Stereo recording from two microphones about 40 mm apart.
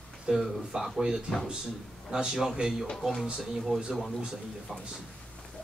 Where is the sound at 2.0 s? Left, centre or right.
Centre.